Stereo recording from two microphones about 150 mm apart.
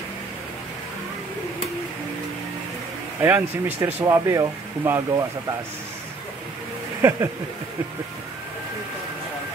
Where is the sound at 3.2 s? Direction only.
15° right (ahead or behind).